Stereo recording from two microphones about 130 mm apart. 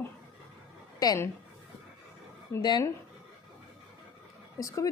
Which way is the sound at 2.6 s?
35° left (ahead or behind).